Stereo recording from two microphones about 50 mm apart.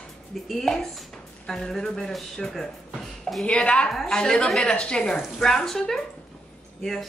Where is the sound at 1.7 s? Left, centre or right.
Centre.